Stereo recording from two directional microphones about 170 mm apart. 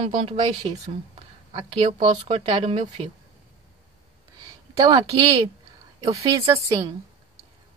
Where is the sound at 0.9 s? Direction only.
35° right (ahead or behind).